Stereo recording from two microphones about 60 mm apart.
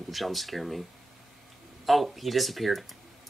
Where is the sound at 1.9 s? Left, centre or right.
Centre.